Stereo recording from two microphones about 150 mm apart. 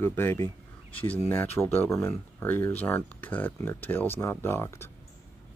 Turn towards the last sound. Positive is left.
turn(degrees=15)  # may be behind; listen again after turning